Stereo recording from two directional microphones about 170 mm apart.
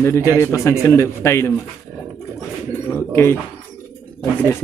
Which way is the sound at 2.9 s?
15° left (ahead or behind).